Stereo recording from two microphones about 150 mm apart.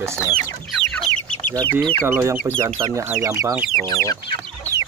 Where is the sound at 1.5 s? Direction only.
15° left (ahead or behind).